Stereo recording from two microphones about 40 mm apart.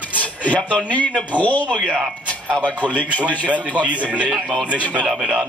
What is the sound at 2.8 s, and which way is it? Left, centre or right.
Speech, right.